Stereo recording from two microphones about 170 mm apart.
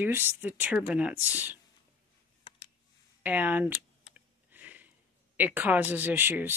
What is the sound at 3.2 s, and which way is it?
Speech, 10° right (ahead or behind).